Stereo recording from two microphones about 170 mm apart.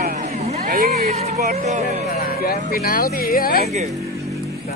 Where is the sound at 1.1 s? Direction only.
40° right (ahead or behind).